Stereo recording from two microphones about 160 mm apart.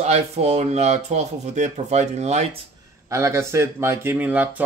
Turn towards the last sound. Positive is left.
turn(degrees=-10)  # may be behind; listen again after turning